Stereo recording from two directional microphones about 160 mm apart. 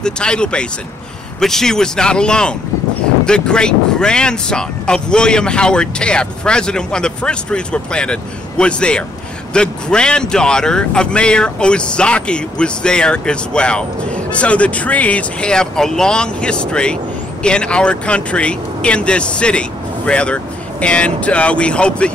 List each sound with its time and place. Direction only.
0.0 s speech: 5° left (ahead or behind)